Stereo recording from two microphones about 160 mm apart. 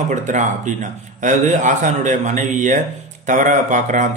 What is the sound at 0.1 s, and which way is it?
Speech, 50° right (ahead or behind).